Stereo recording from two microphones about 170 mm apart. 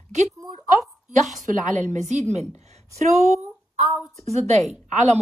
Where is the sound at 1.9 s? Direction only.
45° right (ahead or behind).